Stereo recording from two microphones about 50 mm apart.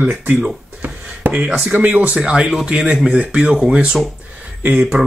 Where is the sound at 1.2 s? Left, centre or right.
Right.